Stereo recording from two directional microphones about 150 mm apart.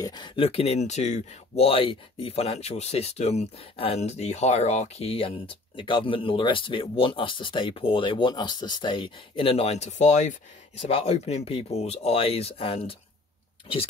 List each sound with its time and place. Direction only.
0.0 s speech: 30° left (ahead or behind)